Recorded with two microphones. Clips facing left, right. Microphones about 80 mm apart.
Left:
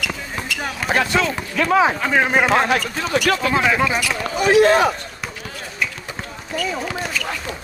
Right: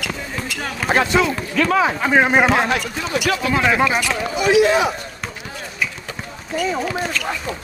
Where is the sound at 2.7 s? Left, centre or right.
Left.